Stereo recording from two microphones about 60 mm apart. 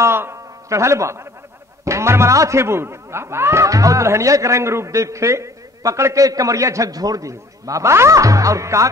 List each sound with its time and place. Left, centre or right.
0.0 s a man's voice: right
0.7 s a man's voice: right
3.6 s a man's voice: right
5.8 s a sound: right
6.1 s a man's voice: right